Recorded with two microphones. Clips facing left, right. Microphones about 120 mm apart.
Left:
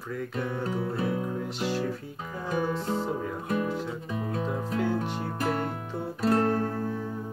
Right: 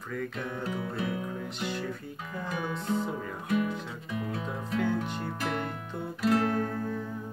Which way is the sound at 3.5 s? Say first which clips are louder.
Even; 35° left (ahead or behind).